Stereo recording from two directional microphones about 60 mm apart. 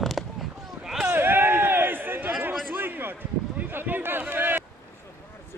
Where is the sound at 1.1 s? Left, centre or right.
Right.